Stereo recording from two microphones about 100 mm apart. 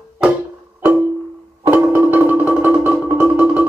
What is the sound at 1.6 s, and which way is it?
Music, 20° right (ahead or behind).